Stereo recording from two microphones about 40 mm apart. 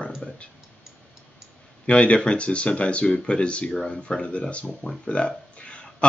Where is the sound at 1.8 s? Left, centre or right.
Left.